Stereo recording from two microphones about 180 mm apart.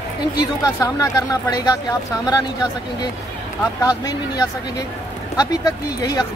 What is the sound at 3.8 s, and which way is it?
Speech, 20° left (ahead or behind).